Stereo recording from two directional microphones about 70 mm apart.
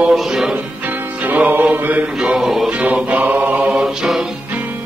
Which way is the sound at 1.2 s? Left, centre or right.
Right.